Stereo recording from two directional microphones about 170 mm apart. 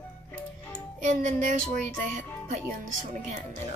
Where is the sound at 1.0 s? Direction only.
45° right (ahead or behind).